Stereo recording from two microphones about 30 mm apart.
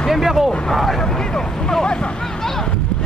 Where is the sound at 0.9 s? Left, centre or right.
Centre.